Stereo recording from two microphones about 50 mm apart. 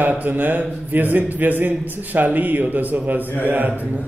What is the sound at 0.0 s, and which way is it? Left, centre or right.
A man's voice, right.